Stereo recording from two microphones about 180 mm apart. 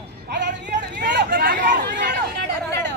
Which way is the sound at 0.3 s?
75° right (ahead or behind).